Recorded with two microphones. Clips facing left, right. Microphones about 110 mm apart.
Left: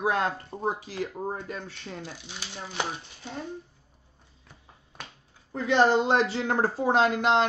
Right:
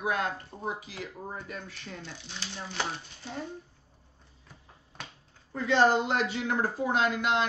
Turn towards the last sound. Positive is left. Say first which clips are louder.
# left 5 dB
turn(degrees=35)  # may be behind; listen again after turning